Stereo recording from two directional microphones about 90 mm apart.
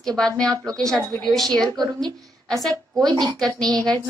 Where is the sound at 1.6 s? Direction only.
50° right (ahead or behind).